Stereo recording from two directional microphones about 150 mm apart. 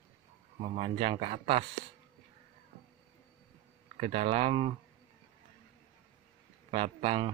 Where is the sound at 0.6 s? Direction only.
40° right (ahead or behind).